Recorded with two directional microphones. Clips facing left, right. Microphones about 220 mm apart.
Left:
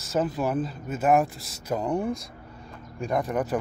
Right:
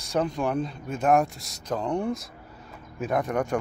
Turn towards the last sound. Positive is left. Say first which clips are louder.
# even
turn(degrees=0)  # may be behind; listen again after turning